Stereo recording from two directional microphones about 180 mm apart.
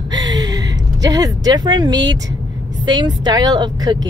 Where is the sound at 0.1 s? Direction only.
20° right (ahead or behind).